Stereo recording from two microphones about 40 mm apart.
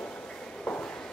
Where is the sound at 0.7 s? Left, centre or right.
Centre.